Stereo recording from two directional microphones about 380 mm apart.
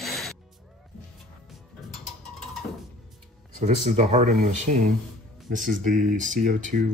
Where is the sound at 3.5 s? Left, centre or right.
Centre.